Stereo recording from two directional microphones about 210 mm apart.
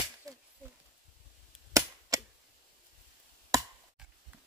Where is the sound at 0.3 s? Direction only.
15° right (ahead or behind).